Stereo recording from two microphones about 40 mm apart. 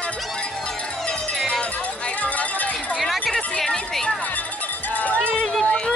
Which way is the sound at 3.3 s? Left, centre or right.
Centre.